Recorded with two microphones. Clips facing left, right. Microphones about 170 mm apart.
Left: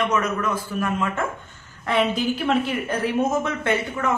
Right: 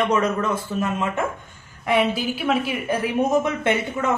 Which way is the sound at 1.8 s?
10° right (ahead or behind).